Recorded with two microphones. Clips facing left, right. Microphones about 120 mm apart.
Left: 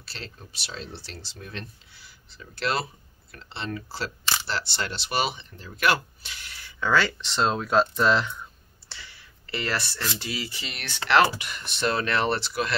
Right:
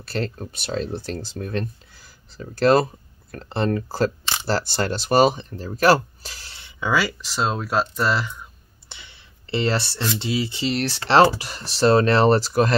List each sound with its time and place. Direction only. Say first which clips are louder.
0.0 s speech: right 15 dB; 50° right (ahead or behind); by 6.7 s 30° right (ahead or behind)
6.8 s speech: right 1 dB; 10° right (ahead or behind)
8.8 s a sound: even; 20° right (ahead or behind)
10.1 s speech: right 9 dB; 25° right (ahead or behind); by 12.7 s 40° right (ahead or behind)